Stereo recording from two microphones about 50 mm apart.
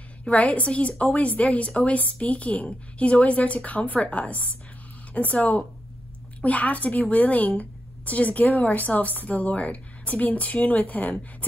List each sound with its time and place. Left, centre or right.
0.2 s a woman's voice: left